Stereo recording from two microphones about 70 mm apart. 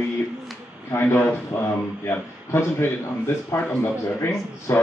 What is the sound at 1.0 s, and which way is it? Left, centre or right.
Speech, left.